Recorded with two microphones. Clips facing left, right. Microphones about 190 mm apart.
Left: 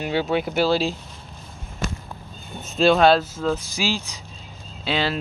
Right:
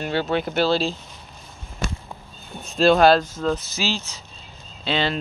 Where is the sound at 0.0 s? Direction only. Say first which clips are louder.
Left 1 dB; 10° left (ahead or behind).